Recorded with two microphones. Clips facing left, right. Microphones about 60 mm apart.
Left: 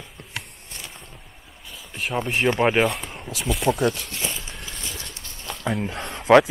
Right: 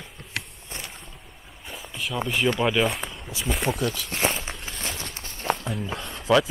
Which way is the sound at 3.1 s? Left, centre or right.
Left.